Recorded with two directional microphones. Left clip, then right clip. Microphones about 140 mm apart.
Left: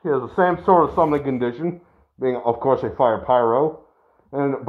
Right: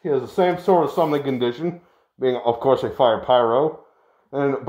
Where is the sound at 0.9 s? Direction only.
50° right (ahead or behind).